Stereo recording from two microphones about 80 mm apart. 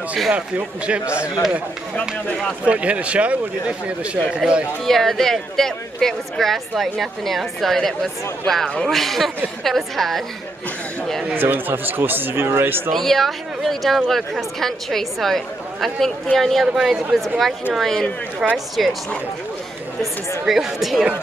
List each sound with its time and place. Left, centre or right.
0.3 s speech: centre
2.6 s speech: centre
4.8 s speech: centre
11.3 s speech: right
12.9 s speech: centre
20.0 s speech: centre